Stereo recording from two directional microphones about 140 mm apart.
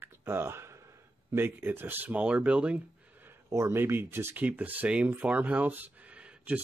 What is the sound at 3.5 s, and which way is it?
Speech, 20° right (ahead or behind).